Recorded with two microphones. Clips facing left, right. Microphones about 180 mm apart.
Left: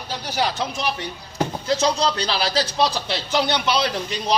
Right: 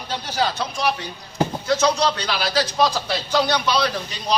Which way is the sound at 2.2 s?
30° left (ahead or behind).